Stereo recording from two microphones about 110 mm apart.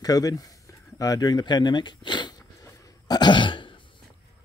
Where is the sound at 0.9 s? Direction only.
30° left (ahead or behind); by 3.7 s 50° left (ahead or behind).